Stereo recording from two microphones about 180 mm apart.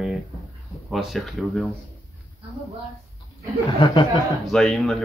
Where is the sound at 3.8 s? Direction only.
25° left (ahead or behind).